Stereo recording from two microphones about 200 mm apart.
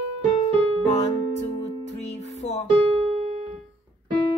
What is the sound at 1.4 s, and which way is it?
Music, 35° left (ahead or behind).